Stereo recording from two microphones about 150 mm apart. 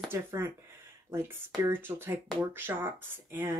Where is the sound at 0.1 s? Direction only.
15° right (ahead or behind).